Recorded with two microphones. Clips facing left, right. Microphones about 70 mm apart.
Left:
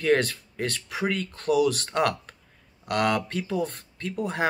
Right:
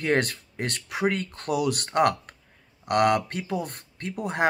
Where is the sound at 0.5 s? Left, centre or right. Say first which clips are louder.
Right 1 dB; centre.